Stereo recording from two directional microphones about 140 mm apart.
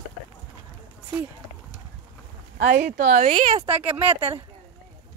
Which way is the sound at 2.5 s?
85° right.